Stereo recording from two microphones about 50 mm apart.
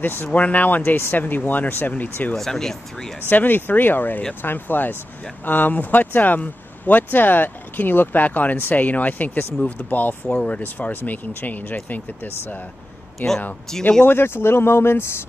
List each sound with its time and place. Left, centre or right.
0.0 s speech: left
0.3 s speech: left
2.3 s speech: centre
3.2 s speech: left
13.7 s speech: centre
14.0 s speech: left